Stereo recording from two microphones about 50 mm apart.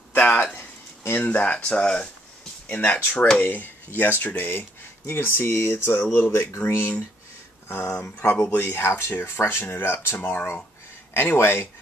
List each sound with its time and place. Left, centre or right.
0.1 s a sound: left
0.6 s a sound: left
1.2 s speech: left
2.6 s speech: left
7.6 s speech: left
8.0 s speech: left
8.5 s speech: left